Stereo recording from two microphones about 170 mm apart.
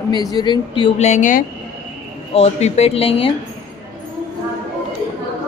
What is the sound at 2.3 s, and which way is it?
Speech, 40° left (ahead or behind).